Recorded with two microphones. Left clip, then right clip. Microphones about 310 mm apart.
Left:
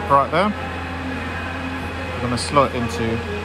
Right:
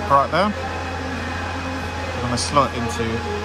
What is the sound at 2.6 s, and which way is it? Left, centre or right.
Speech, centre.